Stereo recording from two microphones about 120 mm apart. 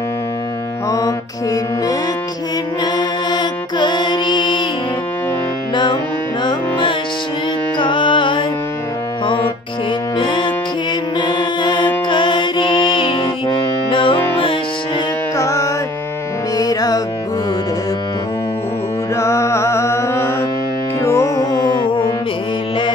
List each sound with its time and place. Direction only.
0.8 s mantra: 30° left (ahead or behind)
6.4 s music: 45° left (ahead or behind)
15.3 s music: 25° left (ahead or behind)
19.1 s music: 25° left (ahead or behind)